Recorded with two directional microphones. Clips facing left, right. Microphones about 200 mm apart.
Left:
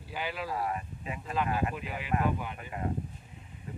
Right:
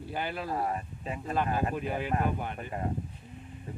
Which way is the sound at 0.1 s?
55° right (ahead or behind).